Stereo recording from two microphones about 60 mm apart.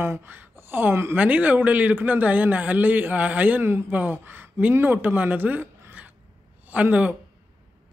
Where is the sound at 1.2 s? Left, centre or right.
Right.